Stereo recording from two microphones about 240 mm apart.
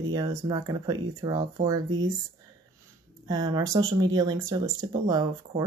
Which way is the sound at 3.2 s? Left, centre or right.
Centre.